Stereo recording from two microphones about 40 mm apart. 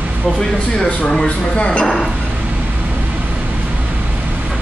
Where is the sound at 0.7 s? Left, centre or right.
Centre.